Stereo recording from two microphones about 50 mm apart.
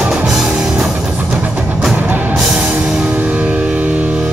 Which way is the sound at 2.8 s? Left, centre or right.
Centre.